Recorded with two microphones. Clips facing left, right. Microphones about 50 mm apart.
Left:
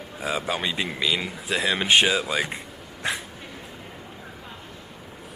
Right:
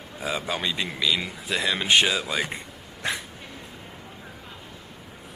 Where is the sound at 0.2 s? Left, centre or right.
Centre.